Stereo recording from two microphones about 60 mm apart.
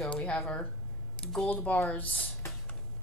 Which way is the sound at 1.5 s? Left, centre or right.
Left.